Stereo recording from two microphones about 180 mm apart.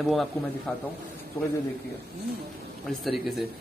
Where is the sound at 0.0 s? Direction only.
Centre (ahead or behind).